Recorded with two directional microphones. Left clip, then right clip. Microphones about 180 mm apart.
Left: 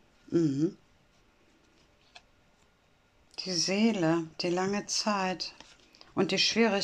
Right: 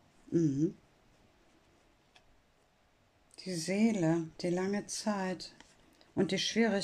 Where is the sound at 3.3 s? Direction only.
20° right (ahead or behind).